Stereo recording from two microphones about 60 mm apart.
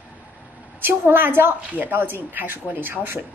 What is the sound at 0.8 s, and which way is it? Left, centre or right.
A woman's voice, right.